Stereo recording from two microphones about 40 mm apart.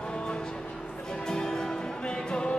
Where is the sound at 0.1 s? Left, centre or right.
Left.